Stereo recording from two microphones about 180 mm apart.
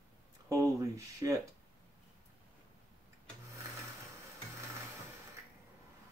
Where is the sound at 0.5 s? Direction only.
15° right (ahead or behind).